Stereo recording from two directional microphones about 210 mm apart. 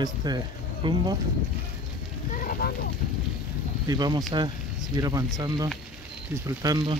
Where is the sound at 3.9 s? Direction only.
20° right (ahead or behind).